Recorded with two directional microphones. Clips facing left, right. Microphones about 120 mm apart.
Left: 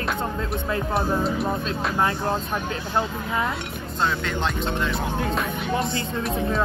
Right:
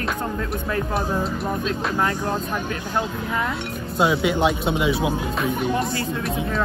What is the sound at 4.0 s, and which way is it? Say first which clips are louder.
Speech: right 6 dB; 10° right (ahead or behind).